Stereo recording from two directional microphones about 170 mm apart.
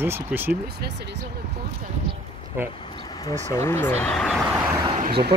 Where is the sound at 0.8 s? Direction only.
80° right.